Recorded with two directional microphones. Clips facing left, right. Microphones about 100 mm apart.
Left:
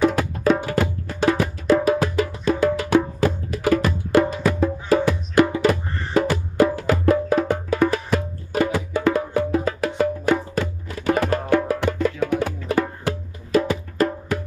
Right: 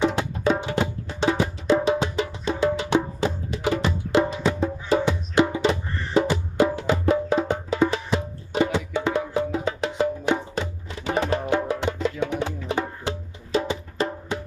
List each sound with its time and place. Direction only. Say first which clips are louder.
0.0 s music: left 3 dB; 25° right (ahead or behind)